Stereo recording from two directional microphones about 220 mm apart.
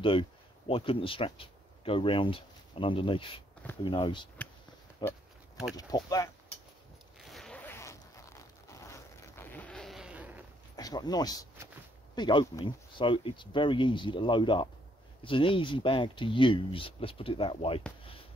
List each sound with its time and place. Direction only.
0.0 s speech: 25° left (ahead or behind)
7.2 s zipper: centre (ahead or behind)
10.8 s speech: 15° left (ahead or behind)